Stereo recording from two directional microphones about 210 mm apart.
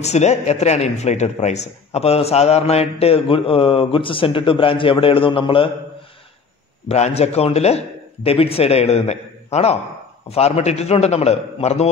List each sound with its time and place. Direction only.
0.0 s a man's voice: 30° left (ahead or behind)
6.9 s a man's voice: 30° left (ahead or behind)